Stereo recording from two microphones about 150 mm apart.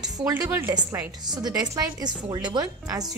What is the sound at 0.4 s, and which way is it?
A woman's voice, 20° right (ahead or behind).